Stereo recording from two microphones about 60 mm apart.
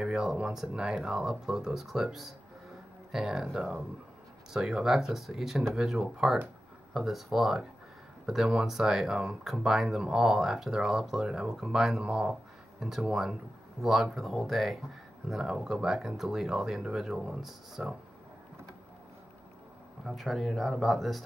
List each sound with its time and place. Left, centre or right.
0.0 s speech: centre
20.1 s speech: centre